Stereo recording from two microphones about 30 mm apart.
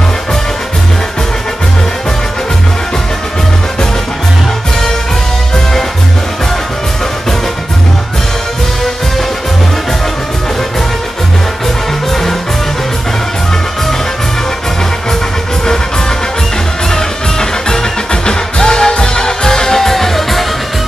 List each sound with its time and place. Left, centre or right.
12.1 s music: centre
16.9 s music: left